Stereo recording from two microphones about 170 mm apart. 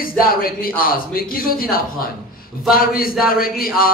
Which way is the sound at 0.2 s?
60° left (ahead or behind).